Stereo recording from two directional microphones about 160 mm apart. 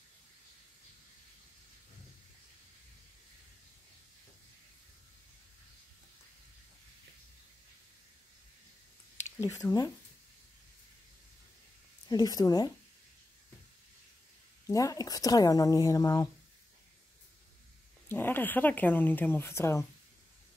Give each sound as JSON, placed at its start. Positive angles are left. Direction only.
{"t": 9.5, "sound": "speech", "side_deg": 20}
{"t": 12.1, "sound": "speech", "side_deg": 25}
{"t": 14.7, "sound": "speech", "side_deg": 20}
{"t": 18.0, "sound": "speech", "side_deg": 10}